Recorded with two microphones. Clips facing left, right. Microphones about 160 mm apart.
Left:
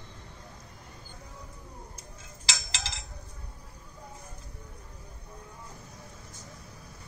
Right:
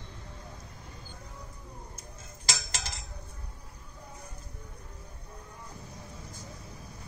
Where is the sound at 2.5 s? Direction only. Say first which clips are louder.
Right 1 dB; 45° right (ahead or behind).